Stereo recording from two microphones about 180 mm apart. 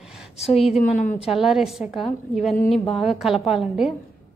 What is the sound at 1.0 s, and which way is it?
Speech, 45° left (ahead or behind).